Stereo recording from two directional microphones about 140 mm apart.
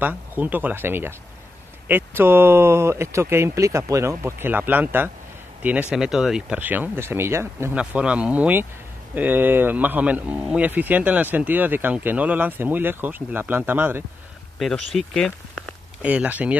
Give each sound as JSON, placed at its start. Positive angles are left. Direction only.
{"t": 0.0, "sound": "speech", "side_deg": -15}
{"t": 7.7, "sound": "speech", "side_deg": -10}
{"t": 14.6, "sound": "speech", "side_deg": 0}
{"t": 16.0, "sound": "speech", "side_deg": -10}